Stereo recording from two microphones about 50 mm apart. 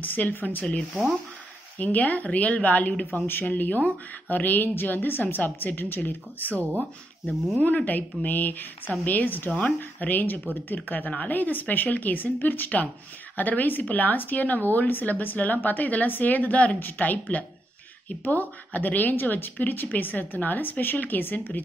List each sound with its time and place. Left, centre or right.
0.0 s speech: left
1.8 s speech: left
3.3 s speech: left
7.6 s speech: left